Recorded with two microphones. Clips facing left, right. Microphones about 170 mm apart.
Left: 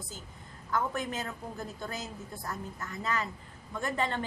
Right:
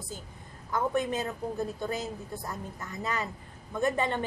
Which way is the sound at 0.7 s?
15° right (ahead or behind).